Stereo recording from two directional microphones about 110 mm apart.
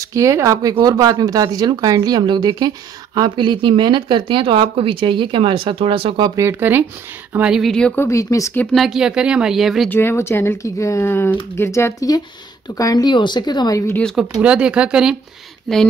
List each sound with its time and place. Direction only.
0.0 s speech: 30° right (ahead or behind); by 6.2 s 55° right (ahead or behind)
6.2 s speech: 30° right (ahead or behind)
6.6 s speech: 20° right (ahead or behind)
7.6 s a woman's voice: 5° left (ahead or behind)
7.9 s speech: 25° left (ahead or behind)
8.7 s speech: 5° right (ahead or behind)
9.8 s speech: 20° left (ahead or behind)
14.1 s speech: 5° right (ahead or behind)